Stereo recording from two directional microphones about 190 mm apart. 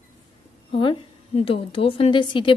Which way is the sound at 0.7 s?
30° left (ahead or behind).